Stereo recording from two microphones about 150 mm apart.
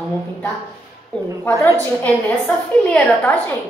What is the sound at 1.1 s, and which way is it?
A woman's voice, 10° left (ahead or behind).